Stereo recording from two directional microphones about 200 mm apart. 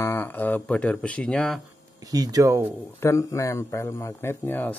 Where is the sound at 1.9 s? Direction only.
20° right (ahead or behind).